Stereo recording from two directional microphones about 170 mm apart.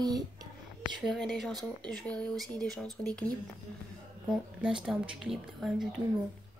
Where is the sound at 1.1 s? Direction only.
Centre (ahead or behind).